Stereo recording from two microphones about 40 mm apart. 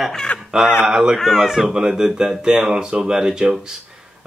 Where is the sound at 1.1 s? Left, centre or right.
Centre.